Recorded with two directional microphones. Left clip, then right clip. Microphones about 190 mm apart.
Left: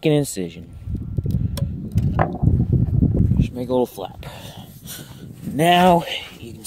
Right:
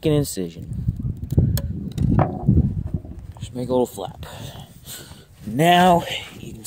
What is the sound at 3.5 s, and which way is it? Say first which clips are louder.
Speech: right 1 dB; 20° left (ahead or behind).